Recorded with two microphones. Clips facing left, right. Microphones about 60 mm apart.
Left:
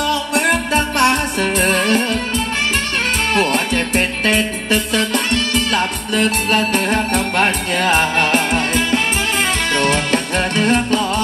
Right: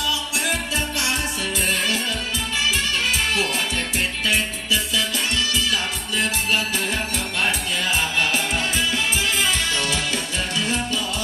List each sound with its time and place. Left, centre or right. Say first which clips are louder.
0.0 s music: left 8 dB; left
3.3 s music: left 7 dB; left